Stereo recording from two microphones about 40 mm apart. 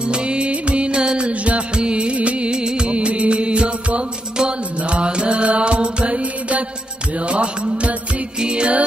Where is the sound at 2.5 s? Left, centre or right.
Right.